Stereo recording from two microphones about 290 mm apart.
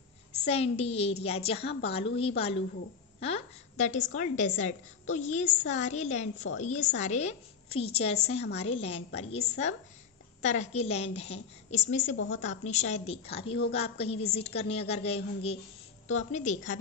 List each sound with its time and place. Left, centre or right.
0.5 s a woman's voice: left